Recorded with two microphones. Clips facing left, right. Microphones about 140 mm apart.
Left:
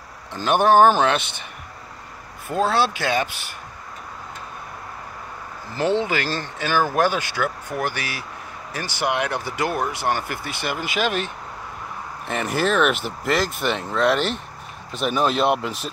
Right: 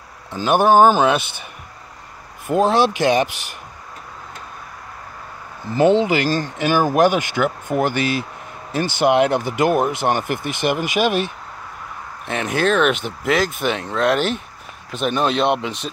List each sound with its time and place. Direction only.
0.3 s speech: 5° right (ahead or behind)
2.4 s speech: 15° right (ahead or behind)
5.8 s speech: 15° right (ahead or behind)
12.3 s speech: centre (ahead or behind)